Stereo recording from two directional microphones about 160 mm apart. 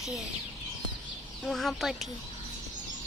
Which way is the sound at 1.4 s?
Centre (ahead or behind).